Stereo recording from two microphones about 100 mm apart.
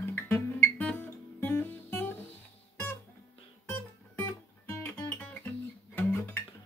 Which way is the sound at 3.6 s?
25° left (ahead or behind).